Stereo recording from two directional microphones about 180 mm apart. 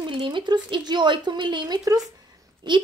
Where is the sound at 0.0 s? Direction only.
25° right (ahead or behind).